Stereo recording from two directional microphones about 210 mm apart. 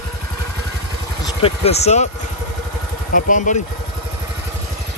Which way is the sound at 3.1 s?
40° left (ahead or behind).